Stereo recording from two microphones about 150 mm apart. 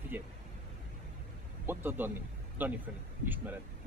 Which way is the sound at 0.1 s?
15° right (ahead or behind).